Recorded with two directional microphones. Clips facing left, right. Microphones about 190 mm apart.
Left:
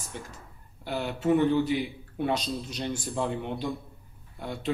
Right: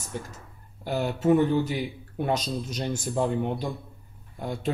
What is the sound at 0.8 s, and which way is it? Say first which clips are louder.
A man's voice: right 3 dB; 45° right (ahead or behind).